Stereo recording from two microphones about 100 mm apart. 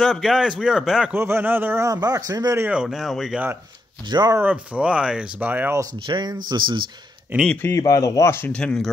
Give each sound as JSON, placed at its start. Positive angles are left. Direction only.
{"t": 0.0, "sound": "a man's voice", "side_deg": -5}
{"t": 1.1, "sound": "a man's voice", "side_deg": -20}
{"t": 1.9, "sound": "speech", "side_deg": -35}
{"t": 2.6, "sound": "a man's voice", "side_deg": -10}
{"t": 4.4, "sound": "speech", "side_deg": -15}
{"t": 6.0, "sound": "speech", "side_deg": -45}
{"t": 7.3, "sound": "a man's voice", "side_deg": -20}
{"t": 7.6, "sound": "speech", "side_deg": 30}
{"t": 8.5, "sound": "speech", "side_deg": 10}